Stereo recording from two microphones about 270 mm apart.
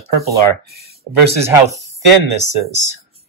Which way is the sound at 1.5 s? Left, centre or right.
Centre.